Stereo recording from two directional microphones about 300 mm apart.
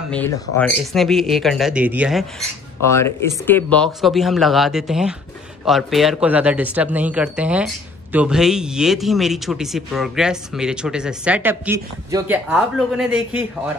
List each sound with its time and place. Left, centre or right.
0.1 s a man's voice: centre
2.8 s a man's voice: centre